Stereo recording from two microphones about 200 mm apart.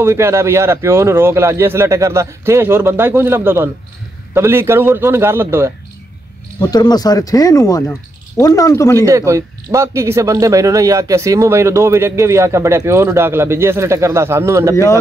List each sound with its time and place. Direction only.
0.0 s speech: 15° right (ahead or behind)
6.6 s speech: 20° left (ahead or behind)
8.9 s speech: 15° right (ahead or behind)